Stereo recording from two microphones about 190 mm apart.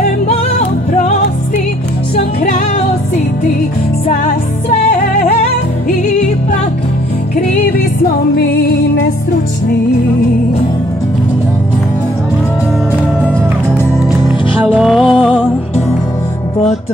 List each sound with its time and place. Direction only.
0.3 s music: 35° left (ahead or behind)
4.1 s music: 45° left (ahead or behind)
13.9 s music: 10° right (ahead or behind)